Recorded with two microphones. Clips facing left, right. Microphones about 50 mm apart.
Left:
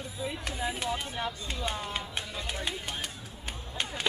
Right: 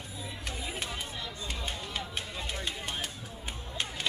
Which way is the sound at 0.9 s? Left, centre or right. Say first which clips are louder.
Left 6 dB; left.